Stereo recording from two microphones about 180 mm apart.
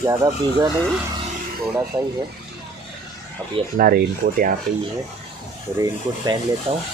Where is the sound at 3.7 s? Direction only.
50° right (ahead or behind).